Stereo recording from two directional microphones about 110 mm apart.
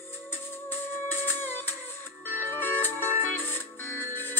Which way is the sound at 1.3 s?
20° left (ahead or behind).